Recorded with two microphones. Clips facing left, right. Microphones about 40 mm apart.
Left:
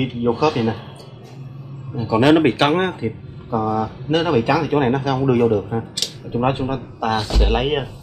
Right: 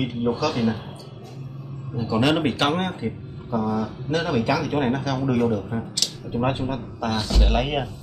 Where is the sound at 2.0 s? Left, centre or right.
Left.